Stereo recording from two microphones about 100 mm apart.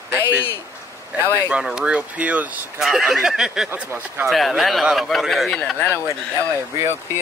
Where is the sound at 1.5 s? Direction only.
5° right (ahead or behind).